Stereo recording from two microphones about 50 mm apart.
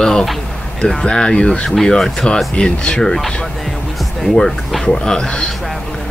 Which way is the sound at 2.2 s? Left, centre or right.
Centre.